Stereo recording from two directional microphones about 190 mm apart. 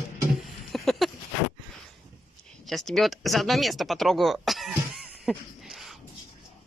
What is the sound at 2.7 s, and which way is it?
Speech, centre (ahead or behind).